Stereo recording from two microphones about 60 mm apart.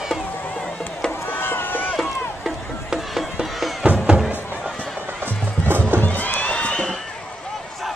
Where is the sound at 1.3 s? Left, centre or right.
Left.